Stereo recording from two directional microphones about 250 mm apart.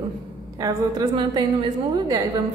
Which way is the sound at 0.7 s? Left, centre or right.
Centre.